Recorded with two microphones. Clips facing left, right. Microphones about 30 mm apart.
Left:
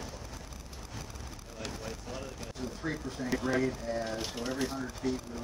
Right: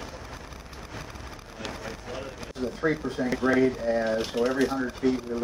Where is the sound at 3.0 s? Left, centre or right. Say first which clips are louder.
Right 7 dB; right.